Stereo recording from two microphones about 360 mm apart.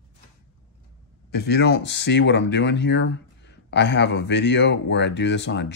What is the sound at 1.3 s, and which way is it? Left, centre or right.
Speech, left.